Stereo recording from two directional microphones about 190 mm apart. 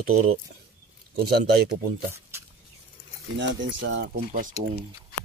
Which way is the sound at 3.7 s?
70° right (ahead or behind).